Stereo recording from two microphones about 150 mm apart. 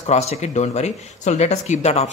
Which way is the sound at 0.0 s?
45° left (ahead or behind).